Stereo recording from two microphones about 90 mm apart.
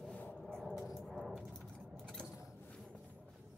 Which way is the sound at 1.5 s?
10° left (ahead or behind).